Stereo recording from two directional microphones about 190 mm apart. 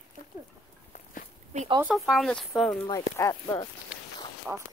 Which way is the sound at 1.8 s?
5° right (ahead or behind).